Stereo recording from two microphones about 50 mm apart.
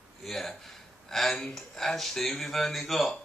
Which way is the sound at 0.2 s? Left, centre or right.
Centre.